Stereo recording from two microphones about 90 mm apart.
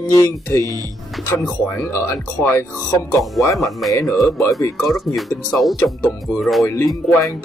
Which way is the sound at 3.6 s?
Centre (ahead or behind).